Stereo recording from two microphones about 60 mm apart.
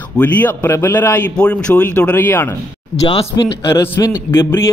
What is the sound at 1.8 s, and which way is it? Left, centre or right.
Speech, left.